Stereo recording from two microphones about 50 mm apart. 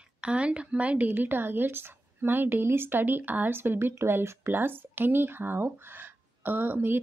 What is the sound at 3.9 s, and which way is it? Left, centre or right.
Speech, right.